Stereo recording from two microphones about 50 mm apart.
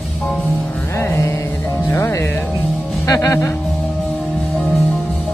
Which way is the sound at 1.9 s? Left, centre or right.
Left.